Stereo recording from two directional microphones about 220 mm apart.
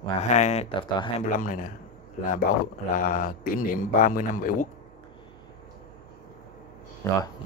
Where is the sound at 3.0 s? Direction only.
40° left (ahead or behind).